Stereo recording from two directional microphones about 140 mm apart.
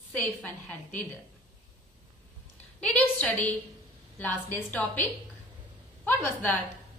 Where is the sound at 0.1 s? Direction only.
10° left (ahead or behind).